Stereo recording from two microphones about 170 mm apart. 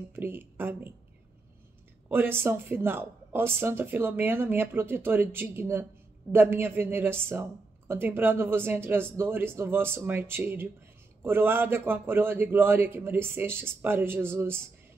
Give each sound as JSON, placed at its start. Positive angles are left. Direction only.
{"t": 0.1, "sound": "speech", "side_deg": -15}
{"t": 2.0, "sound": "speech", "side_deg": -10}